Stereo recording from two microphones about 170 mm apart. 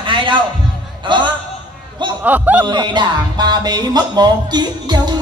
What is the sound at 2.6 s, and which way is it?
Speech, 25° right (ahead or behind).